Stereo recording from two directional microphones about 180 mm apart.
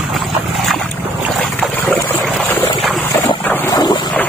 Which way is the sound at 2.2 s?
Centre (ahead or behind).